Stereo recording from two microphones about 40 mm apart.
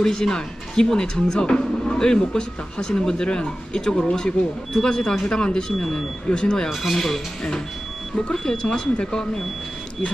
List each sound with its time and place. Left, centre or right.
0.0 s speech: centre
6.7 s speech: centre
8.3 s speech: centre